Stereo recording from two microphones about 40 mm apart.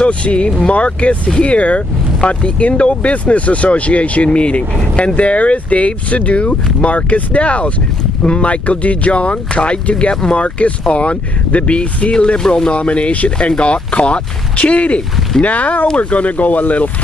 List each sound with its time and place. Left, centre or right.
0.0 s speech: left